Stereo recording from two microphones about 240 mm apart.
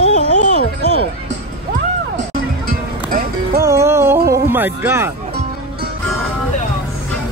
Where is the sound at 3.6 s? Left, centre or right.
Centre.